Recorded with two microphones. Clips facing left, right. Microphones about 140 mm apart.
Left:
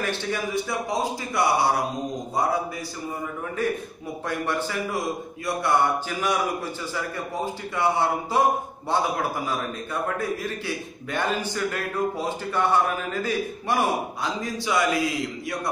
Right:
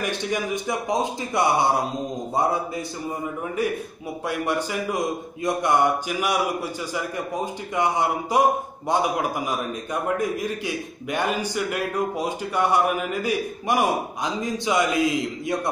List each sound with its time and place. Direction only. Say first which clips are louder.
0.0 s speech: right 1 dB; 15° right (ahead or behind)
4.3 s speech: right 2 dB; 15° right (ahead or behind)
7.7 s speech: right 1 dB; 15° right (ahead or behind)